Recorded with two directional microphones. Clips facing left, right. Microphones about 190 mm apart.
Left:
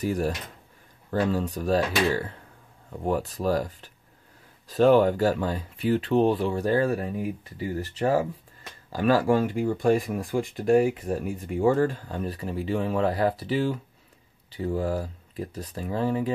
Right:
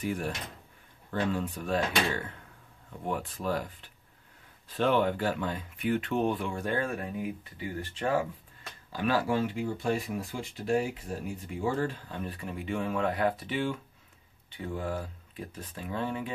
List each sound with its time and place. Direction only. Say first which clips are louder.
0.0 s speech: left 6 dB; 40° left (ahead or behind)
3.0 s speech: left 7 dB; 40° left (ahead or behind)